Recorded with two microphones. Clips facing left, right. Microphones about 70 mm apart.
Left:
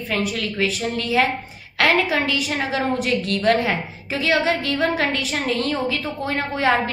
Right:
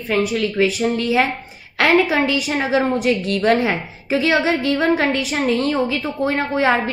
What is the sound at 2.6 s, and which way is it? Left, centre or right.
A woman's voice, centre.